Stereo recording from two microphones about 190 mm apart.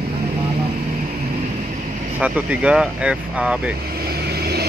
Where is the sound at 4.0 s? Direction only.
55° right (ahead or behind).